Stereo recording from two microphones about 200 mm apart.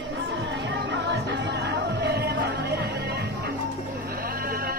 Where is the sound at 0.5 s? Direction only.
65° right (ahead or behind).